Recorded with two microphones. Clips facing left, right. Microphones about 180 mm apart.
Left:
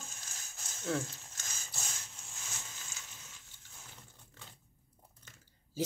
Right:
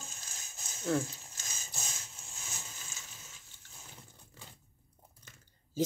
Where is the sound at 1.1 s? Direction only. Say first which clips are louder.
Right 1 dB; 15° right (ahead or behind).